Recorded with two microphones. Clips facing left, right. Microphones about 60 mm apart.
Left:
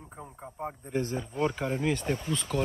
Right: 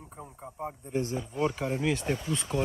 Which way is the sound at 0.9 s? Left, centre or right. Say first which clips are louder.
Even; left.